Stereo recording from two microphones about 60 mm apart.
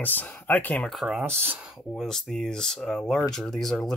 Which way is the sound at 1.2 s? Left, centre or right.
Right.